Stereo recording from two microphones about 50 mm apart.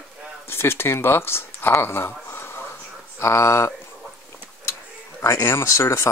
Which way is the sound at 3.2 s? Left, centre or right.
Left.